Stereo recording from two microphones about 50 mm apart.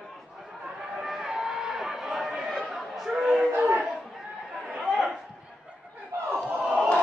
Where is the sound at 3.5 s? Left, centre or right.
Right.